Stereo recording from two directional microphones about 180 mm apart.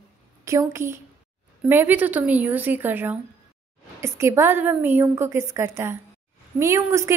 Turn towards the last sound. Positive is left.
turn(degrees=-15)  # may be behind; listen again after turning